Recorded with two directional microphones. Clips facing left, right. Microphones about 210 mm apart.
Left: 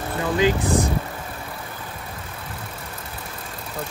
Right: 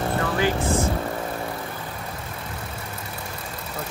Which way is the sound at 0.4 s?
15° left (ahead or behind).